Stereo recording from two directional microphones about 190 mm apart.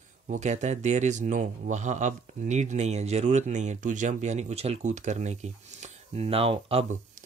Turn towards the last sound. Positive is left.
turn(degrees=-30)  # may be behind; listen again after turning